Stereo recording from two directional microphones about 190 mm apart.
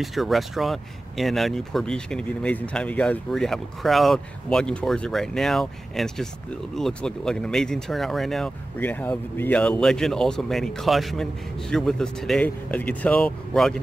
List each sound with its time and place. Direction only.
0.0 s speech: centre (ahead or behind)